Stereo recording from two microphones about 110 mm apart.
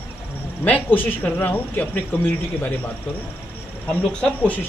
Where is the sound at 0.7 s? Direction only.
15° left (ahead or behind).